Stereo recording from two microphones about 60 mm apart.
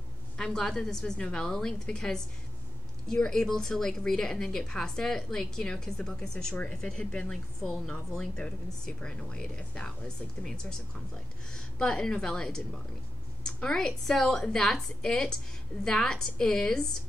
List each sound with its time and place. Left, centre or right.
0.4 s a woman's voice: centre